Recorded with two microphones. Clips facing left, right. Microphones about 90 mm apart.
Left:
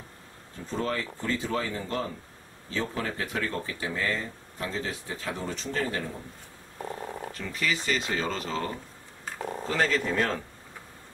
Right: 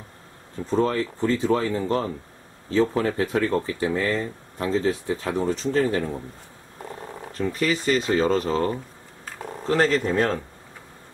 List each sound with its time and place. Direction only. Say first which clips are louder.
0.7 s speech: right 8 dB; 35° right (ahead or behind)
7.3 s speech: right 8 dB; 40° right (ahead or behind)
9.7 s speech: right 6 dB; 45° right (ahead or behind)
10.0 s speech: right 5 dB; 35° right (ahead or behind)